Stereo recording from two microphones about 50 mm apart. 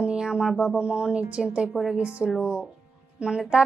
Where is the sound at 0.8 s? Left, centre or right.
Right.